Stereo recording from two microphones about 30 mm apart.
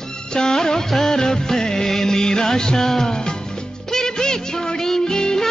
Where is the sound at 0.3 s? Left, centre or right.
Left.